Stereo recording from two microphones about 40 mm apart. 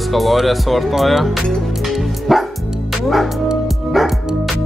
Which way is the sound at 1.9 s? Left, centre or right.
Centre.